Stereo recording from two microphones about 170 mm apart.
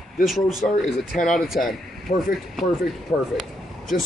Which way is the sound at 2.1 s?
40° left (ahead or behind).